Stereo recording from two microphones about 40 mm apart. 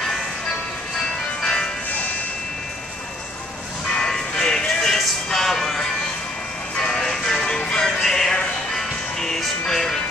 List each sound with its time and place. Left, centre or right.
1.4 s music: centre
3.9 s music: centre
6.8 s music: centre
8.0 s music: centre